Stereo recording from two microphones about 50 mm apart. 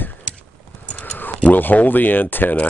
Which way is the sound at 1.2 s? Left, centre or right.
Left.